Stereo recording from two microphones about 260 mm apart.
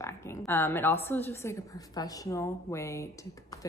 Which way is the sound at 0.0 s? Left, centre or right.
Centre.